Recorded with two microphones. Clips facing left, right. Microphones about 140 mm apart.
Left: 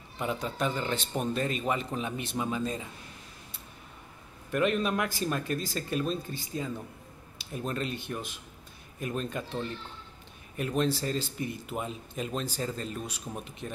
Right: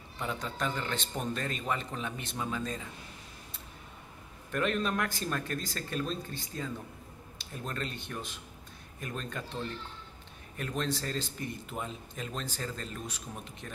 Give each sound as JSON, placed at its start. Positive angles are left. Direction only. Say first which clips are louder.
{"t": 0.2, "sound": "speech", "louder": "left 4 dB", "side_deg": 15}
{"t": 4.5, "sound": "speech", "louder": "left 4 dB", "side_deg": 10}
{"t": 10.6, "sound": "speech", "louder": "left 5 dB", "side_deg": 15}